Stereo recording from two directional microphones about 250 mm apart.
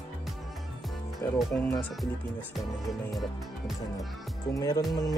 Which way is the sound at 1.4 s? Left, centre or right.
Centre.